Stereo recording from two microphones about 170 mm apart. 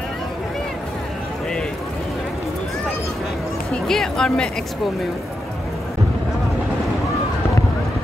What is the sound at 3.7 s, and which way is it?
Speech, 5° left (ahead or behind).